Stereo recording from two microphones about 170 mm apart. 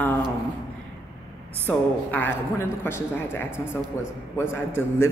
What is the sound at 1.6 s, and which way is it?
A man's voice, 10° left (ahead or behind).